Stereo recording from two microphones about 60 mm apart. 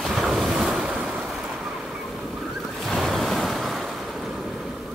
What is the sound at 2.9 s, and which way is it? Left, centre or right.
Waves, centre.